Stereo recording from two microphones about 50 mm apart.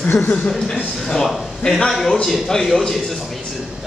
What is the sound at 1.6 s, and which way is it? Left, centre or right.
Speech, centre.